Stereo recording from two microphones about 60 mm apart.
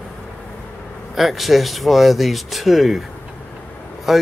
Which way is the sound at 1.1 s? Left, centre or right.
Centre.